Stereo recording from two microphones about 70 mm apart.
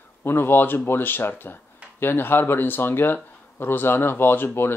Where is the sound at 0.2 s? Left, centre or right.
Left.